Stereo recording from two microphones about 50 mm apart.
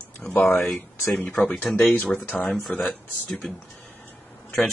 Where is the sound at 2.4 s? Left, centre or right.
Centre.